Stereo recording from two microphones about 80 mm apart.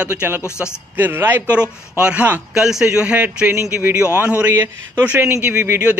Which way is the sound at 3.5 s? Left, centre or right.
Right.